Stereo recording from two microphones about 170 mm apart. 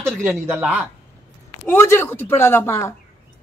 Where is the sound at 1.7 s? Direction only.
15° left (ahead or behind).